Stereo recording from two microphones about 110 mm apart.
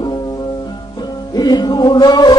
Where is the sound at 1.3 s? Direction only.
35° left (ahead or behind).